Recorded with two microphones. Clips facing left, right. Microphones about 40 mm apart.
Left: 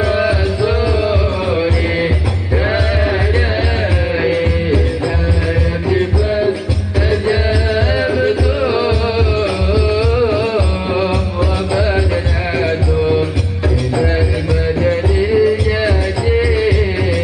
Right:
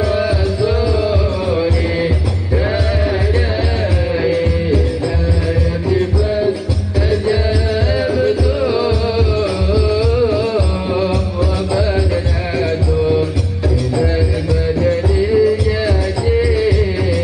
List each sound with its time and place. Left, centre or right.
0.0 s music: left
5.9 s music: left